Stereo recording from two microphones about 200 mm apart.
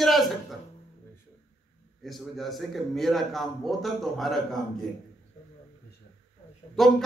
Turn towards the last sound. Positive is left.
turn(degrees=0)  # may be behind; listen again after turning